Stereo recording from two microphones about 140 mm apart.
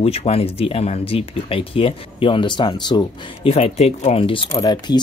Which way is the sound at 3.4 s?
45° left (ahead or behind).